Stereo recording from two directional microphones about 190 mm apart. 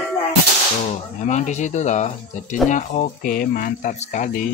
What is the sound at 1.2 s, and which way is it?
Speech, 40° left (ahead or behind).